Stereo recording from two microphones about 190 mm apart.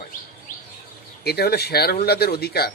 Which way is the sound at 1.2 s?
55° left (ahead or behind).